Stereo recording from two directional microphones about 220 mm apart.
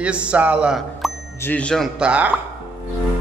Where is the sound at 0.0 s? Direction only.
5° right (ahead or behind).